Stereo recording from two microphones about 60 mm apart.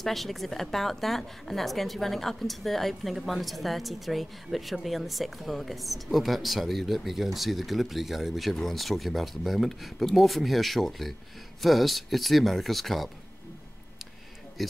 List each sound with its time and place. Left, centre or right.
0.0 s a woman's voice: centre
14.6 s a woman's voice: centre